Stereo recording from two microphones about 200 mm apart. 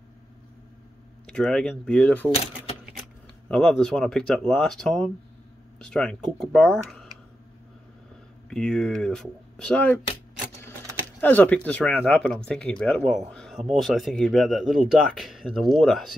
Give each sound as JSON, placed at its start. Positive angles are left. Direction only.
{"t": 1.2, "sound": "speech", "side_deg": 0}
{"t": 3.4, "sound": "speech", "side_deg": 5}
{"t": 8.5, "sound": "speech", "side_deg": 5}
{"t": 11.1, "sound": "speech", "side_deg": 10}